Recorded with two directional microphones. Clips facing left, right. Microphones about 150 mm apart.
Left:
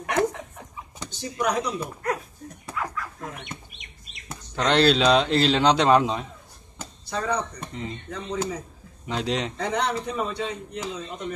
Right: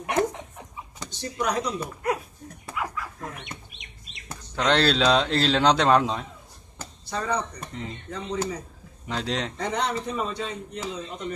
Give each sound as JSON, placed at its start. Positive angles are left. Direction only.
{"t": 0.0, "sound": "chuckle", "side_deg": -25}
{"t": 1.2, "sound": "speech", "side_deg": 10}
{"t": 2.7, "sound": "dog", "side_deg": -15}
{"t": 4.6, "sound": "speech", "side_deg": 5}